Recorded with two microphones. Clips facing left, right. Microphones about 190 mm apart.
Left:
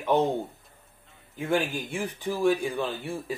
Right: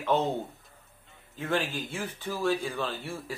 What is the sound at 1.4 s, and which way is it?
Speech, 15° left (ahead or behind).